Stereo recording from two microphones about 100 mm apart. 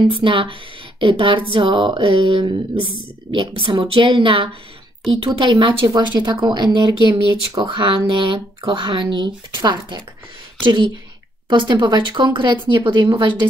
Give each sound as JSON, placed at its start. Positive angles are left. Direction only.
{"t": 0.1, "sound": "speech", "side_deg": -60}